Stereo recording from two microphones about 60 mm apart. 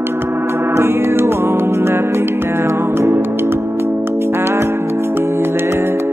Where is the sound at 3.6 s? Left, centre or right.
Right.